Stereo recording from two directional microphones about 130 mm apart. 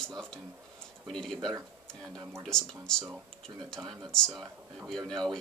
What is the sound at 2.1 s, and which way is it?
Speech, 25° right (ahead or behind).